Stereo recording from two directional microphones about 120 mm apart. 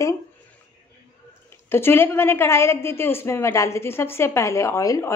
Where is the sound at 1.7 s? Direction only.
20° left (ahead or behind).